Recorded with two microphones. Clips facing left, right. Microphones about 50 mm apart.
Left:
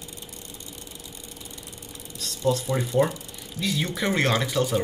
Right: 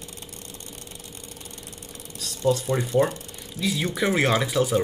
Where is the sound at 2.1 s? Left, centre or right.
Right.